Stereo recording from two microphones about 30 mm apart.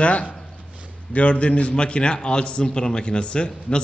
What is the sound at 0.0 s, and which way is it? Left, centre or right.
A man's voice, left.